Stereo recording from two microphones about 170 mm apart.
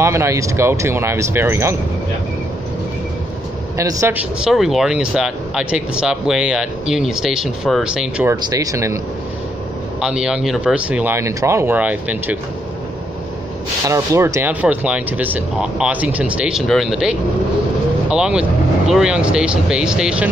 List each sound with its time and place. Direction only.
0.0 s speech: 15° right (ahead or behind)
3.7 s speech: 20° right (ahead or behind)
4.5 s speech: centre (ahead or behind)
8.3 s speech: 20° right (ahead or behind)
9.9 s speech: 5° right (ahead or behind)
13.8 s speech: 15° right (ahead or behind)